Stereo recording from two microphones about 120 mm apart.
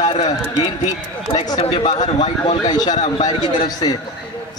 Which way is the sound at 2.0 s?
75° left (ahead or behind).